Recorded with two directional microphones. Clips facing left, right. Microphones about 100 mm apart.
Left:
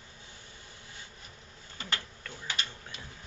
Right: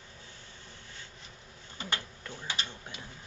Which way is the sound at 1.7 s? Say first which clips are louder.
Right 1 dB; 20° right (ahead or behind).